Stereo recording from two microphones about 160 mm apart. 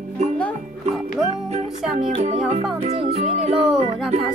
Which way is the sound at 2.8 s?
40° right (ahead or behind).